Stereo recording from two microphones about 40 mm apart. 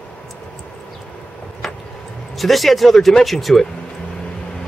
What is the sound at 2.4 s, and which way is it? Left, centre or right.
Speech, centre.